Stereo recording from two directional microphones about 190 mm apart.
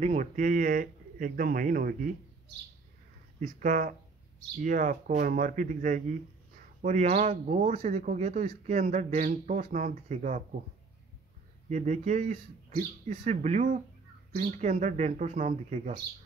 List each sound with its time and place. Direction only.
0.0 s speech: 40° right (ahead or behind)
3.3 s speech: 45° right (ahead or behind)
11.7 s speech: 40° right (ahead or behind)